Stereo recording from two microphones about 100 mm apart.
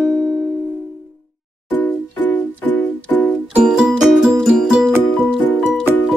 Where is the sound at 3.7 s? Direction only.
5° right (ahead or behind).